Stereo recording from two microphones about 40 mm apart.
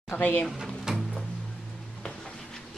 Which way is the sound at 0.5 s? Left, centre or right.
Centre.